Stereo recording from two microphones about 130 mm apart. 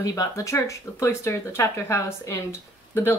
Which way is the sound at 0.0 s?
25° left (ahead or behind).